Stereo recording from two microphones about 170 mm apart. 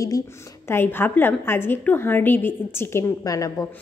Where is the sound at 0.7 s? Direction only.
15° left (ahead or behind).